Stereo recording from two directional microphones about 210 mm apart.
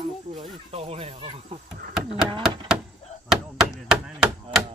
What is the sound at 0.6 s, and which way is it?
Speech, 30° right (ahead or behind).